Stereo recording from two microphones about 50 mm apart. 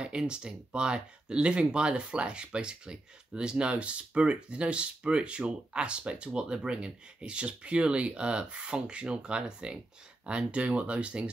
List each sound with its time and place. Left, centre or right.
0.0 s speech: centre